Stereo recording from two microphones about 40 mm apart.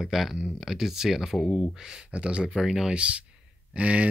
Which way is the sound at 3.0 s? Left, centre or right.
Right.